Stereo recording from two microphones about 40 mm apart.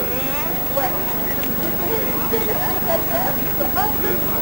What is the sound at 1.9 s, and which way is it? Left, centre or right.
Speech, centre.